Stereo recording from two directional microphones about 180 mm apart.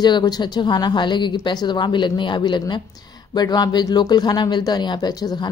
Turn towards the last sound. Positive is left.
turn(degrees=25)  # may be behind; listen again after turning